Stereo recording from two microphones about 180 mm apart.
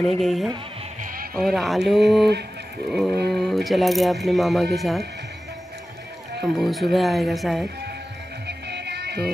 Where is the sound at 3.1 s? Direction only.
65° right (ahead or behind).